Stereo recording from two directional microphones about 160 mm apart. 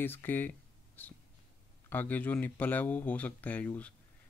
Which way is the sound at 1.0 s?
10° left (ahead or behind).